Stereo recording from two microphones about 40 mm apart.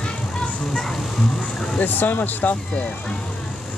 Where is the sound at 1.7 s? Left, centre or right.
Left.